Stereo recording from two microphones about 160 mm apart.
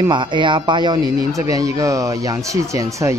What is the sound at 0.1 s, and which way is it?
Speech, 30° right (ahead or behind).